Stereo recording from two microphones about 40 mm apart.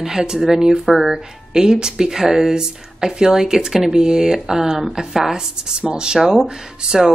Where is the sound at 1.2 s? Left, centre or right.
Centre.